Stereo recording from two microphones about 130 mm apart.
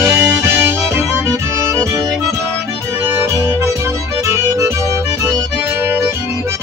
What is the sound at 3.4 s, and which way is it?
Music, 20° right (ahead or behind).